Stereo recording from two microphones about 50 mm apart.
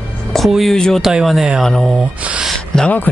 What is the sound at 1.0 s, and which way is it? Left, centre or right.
Speech, centre.